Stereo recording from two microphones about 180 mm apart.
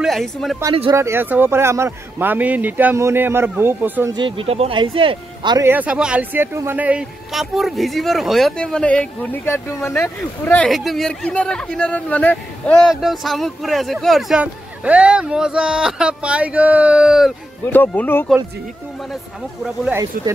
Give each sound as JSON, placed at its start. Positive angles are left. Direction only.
{"t": 0.0, "sound": "speech", "side_deg": 0}
{"t": 0.9, "sound": "speech", "side_deg": -15}
{"t": 4.1, "sound": "speech", "side_deg": -30}
{"t": 5.7, "sound": "speech", "side_deg": -10}
{"t": 17.6, "sound": "speech", "side_deg": 10}
{"t": 19.6, "sound": "speech", "side_deg": -5}